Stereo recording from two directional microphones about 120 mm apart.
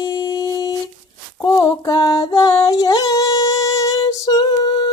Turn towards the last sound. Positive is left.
turn(degrees=35)  # may be behind; listen again after turning